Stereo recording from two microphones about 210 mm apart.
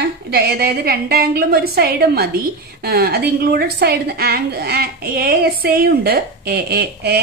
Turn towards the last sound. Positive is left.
turn(degrees=-50)  # may be behind; listen again after turning